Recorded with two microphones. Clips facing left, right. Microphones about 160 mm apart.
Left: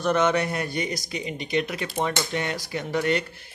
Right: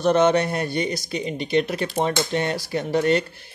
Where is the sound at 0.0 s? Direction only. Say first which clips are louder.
Right 4 dB; 30° right (ahead or behind).